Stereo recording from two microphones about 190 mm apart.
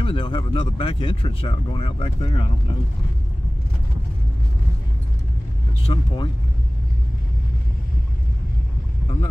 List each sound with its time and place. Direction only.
0.0 s speech: 25° left (ahead or behind)
5.9 s speech: 25° left (ahead or behind)